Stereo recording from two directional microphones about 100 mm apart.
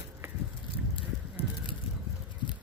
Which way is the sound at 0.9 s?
60° left (ahead or behind).